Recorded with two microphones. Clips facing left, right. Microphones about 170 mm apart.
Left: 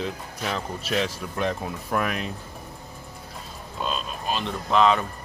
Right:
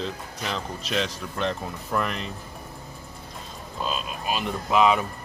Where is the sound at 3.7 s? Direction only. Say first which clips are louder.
Even; 5° right (ahead or behind).